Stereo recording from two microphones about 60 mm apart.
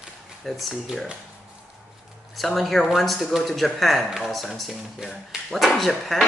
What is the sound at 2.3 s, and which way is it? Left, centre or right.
Speech, centre.